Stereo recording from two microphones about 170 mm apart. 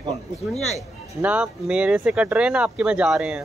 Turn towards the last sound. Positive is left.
turn(degrees=-5)  # may be behind; listen again after turning